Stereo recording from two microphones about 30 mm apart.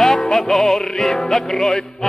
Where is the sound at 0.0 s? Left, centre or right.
Centre.